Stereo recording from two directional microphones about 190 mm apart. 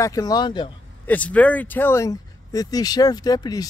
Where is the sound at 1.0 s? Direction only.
10° left (ahead or behind).